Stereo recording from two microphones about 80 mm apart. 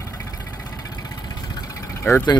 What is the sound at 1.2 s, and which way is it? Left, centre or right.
Vehicle, left.